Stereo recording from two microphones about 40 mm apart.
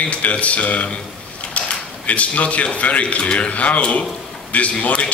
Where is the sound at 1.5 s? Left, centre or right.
Left.